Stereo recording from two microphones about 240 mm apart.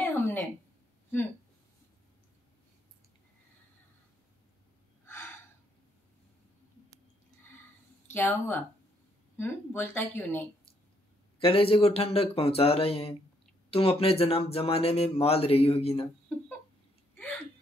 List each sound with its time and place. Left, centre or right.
0.0 s a sound: centre
5.0 s gasp: centre
8.1 s speech: centre
11.4 s speech: left